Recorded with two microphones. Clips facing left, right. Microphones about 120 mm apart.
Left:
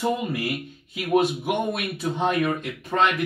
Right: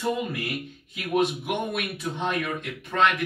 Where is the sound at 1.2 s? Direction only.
15° left (ahead or behind).